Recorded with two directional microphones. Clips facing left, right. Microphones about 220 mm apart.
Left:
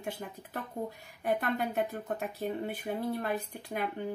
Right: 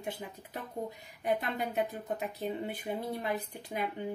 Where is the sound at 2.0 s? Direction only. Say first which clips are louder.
Left 1 dB; 15° right (ahead or behind).